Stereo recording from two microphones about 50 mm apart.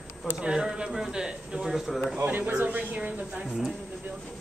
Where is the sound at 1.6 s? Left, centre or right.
Centre.